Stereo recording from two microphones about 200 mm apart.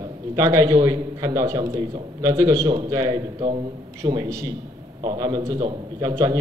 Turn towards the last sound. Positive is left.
turn(degrees=-20)  # may be behind; listen again after turning